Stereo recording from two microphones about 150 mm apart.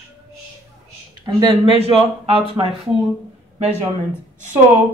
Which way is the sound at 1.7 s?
40° right (ahead or behind).